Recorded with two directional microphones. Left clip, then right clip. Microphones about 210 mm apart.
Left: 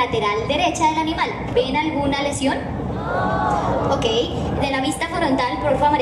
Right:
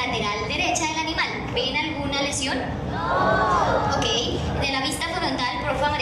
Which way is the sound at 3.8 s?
40° left (ahead or behind).